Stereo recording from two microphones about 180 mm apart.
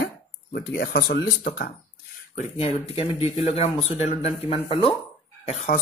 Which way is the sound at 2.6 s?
30° left (ahead or behind).